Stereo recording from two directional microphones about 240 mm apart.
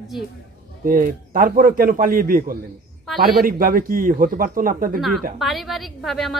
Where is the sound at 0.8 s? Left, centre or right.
Right.